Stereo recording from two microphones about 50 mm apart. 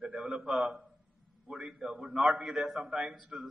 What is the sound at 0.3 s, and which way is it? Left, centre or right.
Speech, centre.